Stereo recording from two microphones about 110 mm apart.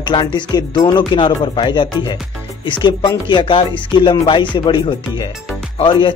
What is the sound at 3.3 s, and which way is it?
Speech, 50° left (ahead or behind).